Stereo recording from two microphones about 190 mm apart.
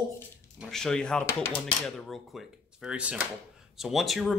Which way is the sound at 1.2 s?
15° left (ahead or behind).